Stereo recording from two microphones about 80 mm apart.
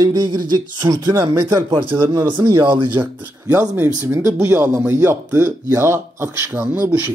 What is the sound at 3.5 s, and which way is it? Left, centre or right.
Speech, right.